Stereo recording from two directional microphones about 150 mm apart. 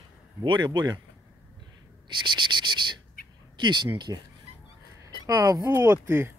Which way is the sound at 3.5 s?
30° right (ahead or behind).